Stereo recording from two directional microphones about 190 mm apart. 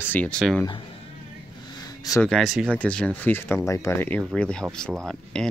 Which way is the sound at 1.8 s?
20° left (ahead or behind).